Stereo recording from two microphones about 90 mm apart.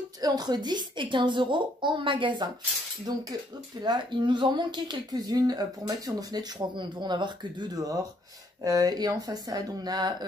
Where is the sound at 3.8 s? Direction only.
55° right (ahead or behind).